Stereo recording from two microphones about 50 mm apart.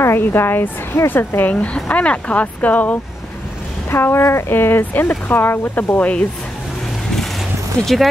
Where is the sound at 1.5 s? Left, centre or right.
Left.